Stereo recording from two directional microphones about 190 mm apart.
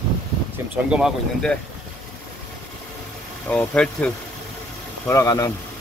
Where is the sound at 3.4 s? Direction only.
5° left (ahead or behind).